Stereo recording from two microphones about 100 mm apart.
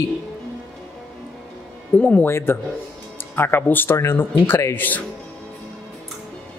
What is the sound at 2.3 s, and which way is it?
Speech, 25° left (ahead or behind).